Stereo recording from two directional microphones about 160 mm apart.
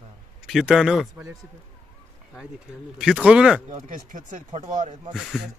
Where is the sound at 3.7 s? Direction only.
50° right (ahead or behind).